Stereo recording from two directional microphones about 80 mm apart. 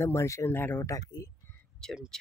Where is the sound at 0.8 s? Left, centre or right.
Left.